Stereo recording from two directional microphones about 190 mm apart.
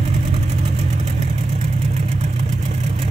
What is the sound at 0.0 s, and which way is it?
Vehicle, 35° right (ahead or behind).